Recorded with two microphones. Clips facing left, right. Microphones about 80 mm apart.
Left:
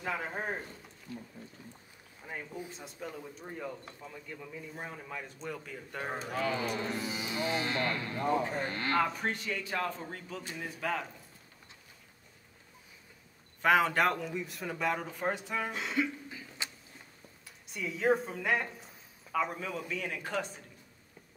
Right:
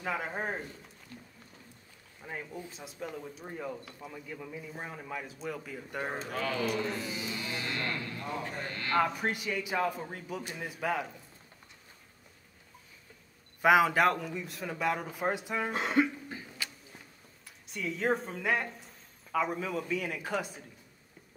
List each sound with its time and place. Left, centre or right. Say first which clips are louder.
0.0 s speech: right 1 dB; centre
2.2 s a man's voice: even; centre
6.2 s speech: left 1 dB; centre
6.7 s speech: right 1 dB; left
9.0 s a man's voice: right 2 dB; centre
13.6 s speech: right 3 dB; centre
15.7 s speech: right 9 dB; right
16.6 s a sound: left 1 dB; left
17.6 s speech: left 2 dB; centre